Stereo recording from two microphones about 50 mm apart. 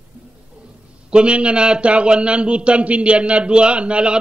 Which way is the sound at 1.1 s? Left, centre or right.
Right.